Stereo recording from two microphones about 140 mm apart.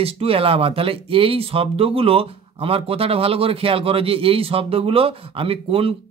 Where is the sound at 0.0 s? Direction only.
45° right (ahead or behind).